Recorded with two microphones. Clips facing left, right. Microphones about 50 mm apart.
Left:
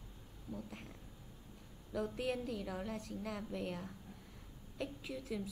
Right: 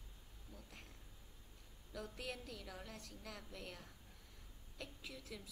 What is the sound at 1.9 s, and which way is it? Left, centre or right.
A woman's voice, left.